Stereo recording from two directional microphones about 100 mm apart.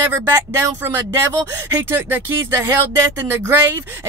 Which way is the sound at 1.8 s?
25° right (ahead or behind).